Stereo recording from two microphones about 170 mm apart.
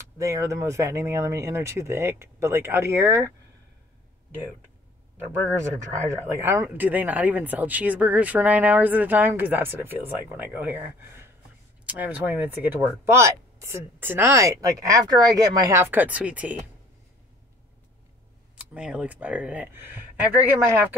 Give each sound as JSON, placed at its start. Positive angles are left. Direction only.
{"t": 0.2, "sound": "speech", "side_deg": -20}
{"t": 6.0, "sound": "speech", "side_deg": -15}
{"t": 18.6, "sound": "speech", "side_deg": -5}